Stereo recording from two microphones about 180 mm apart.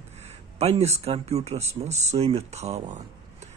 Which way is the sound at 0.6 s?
35° right (ahead or behind).